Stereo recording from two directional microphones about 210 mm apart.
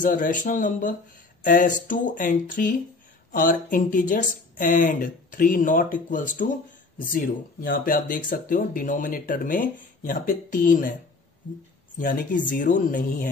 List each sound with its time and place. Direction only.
0.0 s speech: 40° left (ahead or behind)
12.0 s speech: 40° left (ahead or behind)